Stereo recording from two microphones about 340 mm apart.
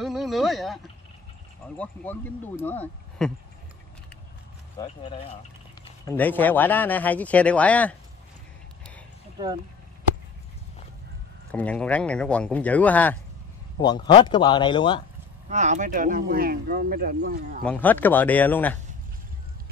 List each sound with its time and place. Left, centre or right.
0.0 s a sound: centre
1.8 s speech: centre
4.7 s speech: centre
11.5 s speech: centre
15.4 s speech: right
17.6 s speech: centre